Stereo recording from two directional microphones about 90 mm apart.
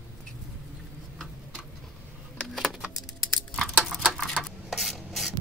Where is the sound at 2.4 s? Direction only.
Centre (ahead or behind).